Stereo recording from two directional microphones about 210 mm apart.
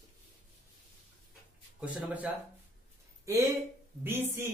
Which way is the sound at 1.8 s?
10° right (ahead or behind).